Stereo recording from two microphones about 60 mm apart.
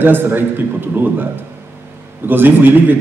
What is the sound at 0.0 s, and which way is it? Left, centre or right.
A man's voice, right.